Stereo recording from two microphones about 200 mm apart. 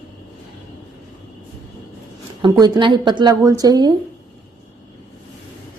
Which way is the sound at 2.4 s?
25° right (ahead or behind).